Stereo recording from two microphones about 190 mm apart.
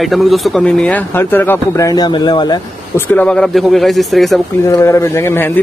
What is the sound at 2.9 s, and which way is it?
Speech, 10° left (ahead or behind).